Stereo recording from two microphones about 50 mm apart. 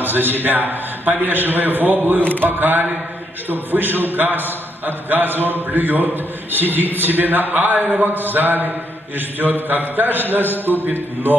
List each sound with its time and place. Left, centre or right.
0.0 s a man's voice: right